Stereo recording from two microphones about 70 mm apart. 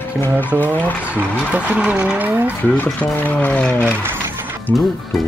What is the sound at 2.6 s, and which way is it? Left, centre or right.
Speech, left.